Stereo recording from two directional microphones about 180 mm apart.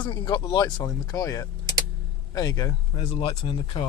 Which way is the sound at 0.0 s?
25° left (ahead or behind).